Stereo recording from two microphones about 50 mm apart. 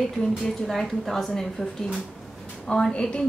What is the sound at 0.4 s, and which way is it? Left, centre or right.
A woman's voice, centre.